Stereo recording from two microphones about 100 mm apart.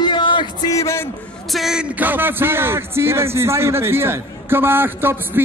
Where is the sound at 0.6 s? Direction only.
30° left (ahead or behind).